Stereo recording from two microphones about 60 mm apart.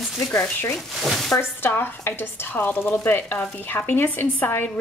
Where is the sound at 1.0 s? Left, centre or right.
Centre.